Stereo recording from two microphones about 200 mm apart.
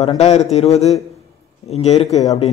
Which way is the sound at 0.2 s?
30° left (ahead or behind).